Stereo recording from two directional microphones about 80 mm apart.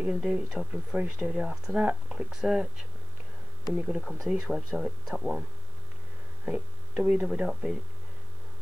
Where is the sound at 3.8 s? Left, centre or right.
Centre.